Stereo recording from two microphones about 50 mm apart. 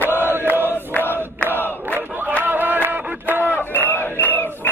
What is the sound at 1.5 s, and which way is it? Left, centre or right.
Battle cry, left.